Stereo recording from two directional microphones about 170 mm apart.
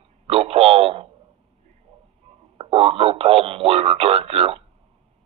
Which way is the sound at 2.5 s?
35° right (ahead or behind).